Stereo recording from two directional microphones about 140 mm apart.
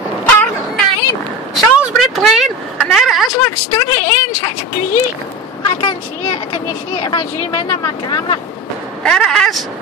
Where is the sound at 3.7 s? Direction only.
20° left (ahead or behind).